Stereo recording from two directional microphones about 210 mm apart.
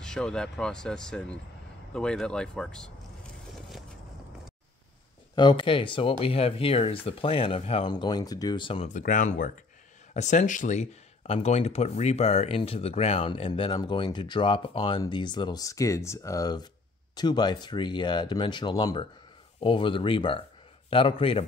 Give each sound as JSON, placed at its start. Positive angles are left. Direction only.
{"t": 0.0, "sound": "speech", "side_deg": 5}
{"t": 5.3, "sound": "speech", "side_deg": 20}
{"t": 8.9, "sound": "speech", "side_deg": 40}